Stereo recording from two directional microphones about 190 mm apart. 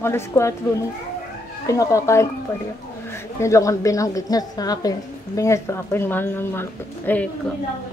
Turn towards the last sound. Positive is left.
turn(degrees=10)  # may be behind; listen again after turning